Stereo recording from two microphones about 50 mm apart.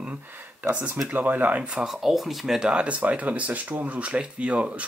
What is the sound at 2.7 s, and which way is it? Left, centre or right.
Speech, right.